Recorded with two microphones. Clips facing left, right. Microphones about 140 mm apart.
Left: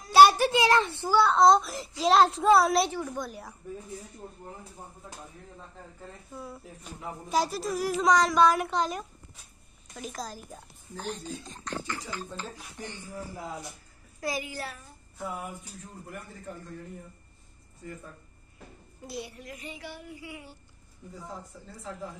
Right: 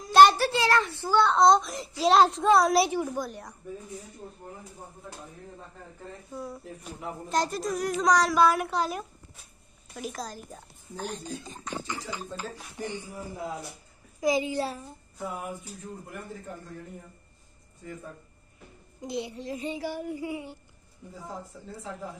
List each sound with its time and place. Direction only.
0.1 s a sound: 5° left (ahead or behind); by 1.0 s 25° left (ahead or behind)
1.0 s a woman's voice: 5° left (ahead or behind)
6.3 s a woman's voice: centre (ahead or behind); by 13.2 s 15° right (ahead or behind)
14.2 s a child's voice: 20° right (ahead or behind)
18.9 s a child's voice: 20° right (ahead or behind)
19.9 s child singing: 40° right (ahead or behind)